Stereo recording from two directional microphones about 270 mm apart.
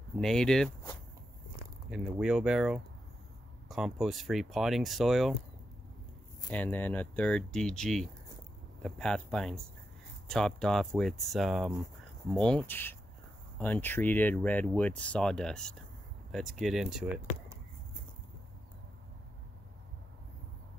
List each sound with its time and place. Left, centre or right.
0.2 s speech: centre
1.9 s speech: centre
6.5 s speech: centre